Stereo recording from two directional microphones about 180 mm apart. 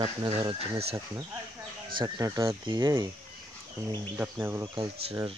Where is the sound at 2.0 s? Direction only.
20° right (ahead or behind).